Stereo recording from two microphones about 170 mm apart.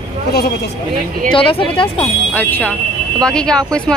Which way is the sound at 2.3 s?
10° left (ahead or behind).